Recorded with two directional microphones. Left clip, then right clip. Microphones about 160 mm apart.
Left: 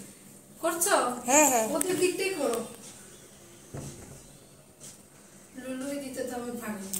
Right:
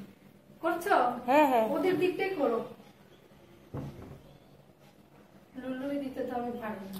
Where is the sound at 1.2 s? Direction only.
Centre (ahead or behind).